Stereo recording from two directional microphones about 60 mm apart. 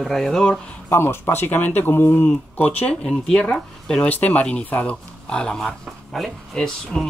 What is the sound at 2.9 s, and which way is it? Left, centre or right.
Speech, centre.